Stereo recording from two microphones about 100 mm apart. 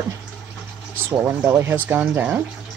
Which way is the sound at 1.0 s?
20° right (ahead or behind).